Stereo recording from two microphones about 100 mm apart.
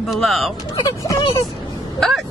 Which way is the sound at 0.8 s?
35° left (ahead or behind).